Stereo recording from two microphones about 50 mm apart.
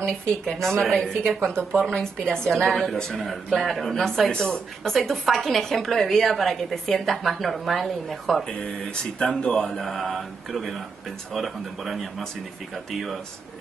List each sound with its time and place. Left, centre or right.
0.3 s a woman's voice: centre
4.3 s speech: left
4.8 s a woman's voice: centre
8.5 s a woman's voice: centre